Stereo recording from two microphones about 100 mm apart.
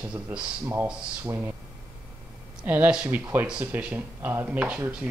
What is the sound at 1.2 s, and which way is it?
Speech, 20° right (ahead or behind).